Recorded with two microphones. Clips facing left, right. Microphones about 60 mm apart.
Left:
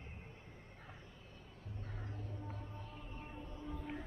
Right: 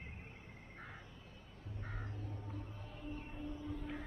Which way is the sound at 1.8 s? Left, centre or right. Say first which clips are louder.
Right 2 dB; right.